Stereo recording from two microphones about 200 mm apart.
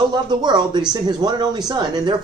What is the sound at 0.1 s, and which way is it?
Speech, 20° right (ahead or behind).